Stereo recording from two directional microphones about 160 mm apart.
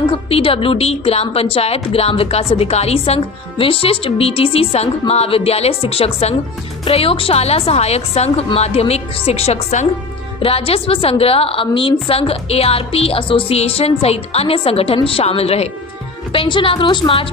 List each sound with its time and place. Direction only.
0.1 s a woman's voice: 35° left (ahead or behind)